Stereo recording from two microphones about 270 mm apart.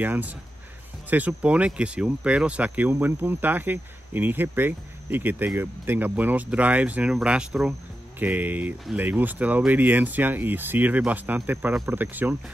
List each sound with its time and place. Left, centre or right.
0.0 s speech: centre